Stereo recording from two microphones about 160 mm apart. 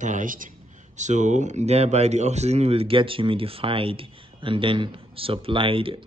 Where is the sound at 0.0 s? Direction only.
55° right (ahead or behind).